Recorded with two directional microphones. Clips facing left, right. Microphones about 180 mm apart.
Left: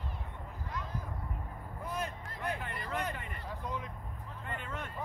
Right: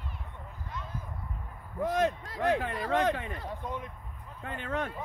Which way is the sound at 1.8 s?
90° right.